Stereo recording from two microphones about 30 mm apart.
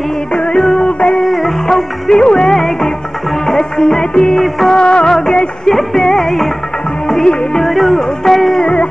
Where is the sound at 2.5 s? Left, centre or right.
Centre.